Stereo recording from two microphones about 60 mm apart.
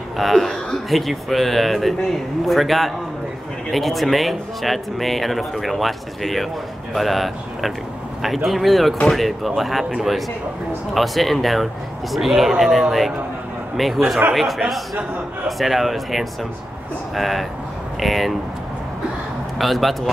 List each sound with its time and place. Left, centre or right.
0.2 s speech: centre
11.0 s speech: centre
19.6 s speech: centre